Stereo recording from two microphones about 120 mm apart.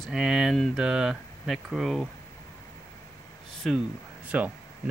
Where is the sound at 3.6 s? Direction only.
Centre (ahead or behind).